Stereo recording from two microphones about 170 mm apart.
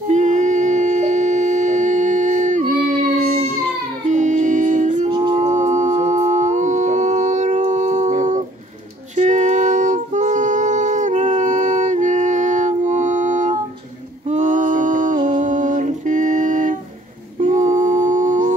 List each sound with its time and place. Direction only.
0.1 s humming: 45° right (ahead or behind)
4.1 s music: 45° right (ahead or behind)
5.1 s music: 30° right (ahead or behind)
5.4 s humming: 45° right (ahead or behind)
9.1 s music: 45° right (ahead or behind)
14.3 s a sound: 45° right (ahead or behind)
17.4 s humming: 45° right (ahead or behind)